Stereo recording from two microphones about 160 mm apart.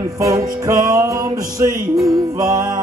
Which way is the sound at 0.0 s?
20° right (ahead or behind).